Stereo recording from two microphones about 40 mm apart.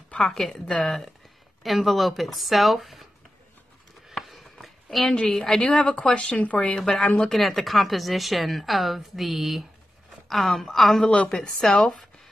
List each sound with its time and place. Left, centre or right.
0.2 s a woman's voice: centre
4.1 s a sound: centre
4.9 s a woman's voice: centre
5.6 s speech: left
6.7 s a woman's voice: centre